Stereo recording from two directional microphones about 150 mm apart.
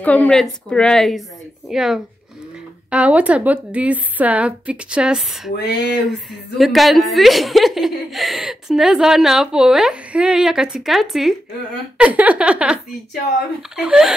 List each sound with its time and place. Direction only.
0.0 s a woman's voice: 10° left (ahead or behind)
5.6 s a sound: 90° left
6.6 s a woman's voice: centre (ahead or behind)